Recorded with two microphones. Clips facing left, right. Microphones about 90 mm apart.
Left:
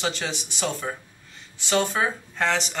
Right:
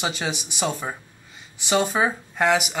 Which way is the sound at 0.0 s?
15° right (ahead or behind).